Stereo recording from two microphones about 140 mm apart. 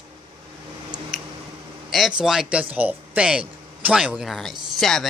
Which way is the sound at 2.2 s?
5° right (ahead or behind).